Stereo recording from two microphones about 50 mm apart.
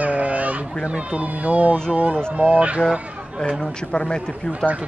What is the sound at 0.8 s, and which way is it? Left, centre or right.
Speech, right.